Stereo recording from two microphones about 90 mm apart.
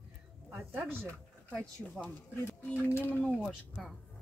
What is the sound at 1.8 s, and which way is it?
Speech, 15° left (ahead or behind).